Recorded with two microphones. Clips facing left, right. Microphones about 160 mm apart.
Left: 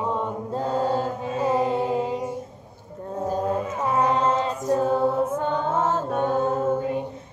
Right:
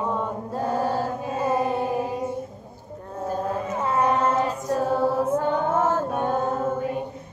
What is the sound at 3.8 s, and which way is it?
Female singing, 20° left (ahead or behind).